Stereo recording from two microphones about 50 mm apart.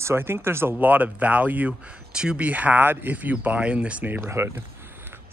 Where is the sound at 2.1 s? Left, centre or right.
Centre.